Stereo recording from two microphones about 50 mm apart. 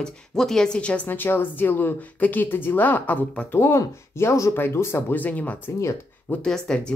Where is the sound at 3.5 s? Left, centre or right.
Left.